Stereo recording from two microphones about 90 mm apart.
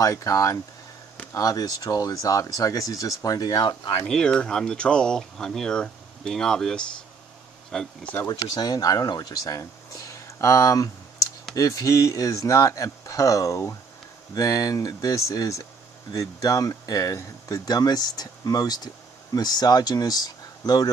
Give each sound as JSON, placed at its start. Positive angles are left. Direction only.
{"t": 0.0, "sound": "speech", "side_deg": 40}
{"t": 4.1, "sound": "speech", "side_deg": 10}
{"t": 8.3, "sound": "speech", "side_deg": 45}